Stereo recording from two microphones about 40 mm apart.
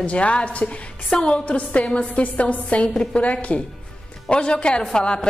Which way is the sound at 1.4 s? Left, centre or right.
Left.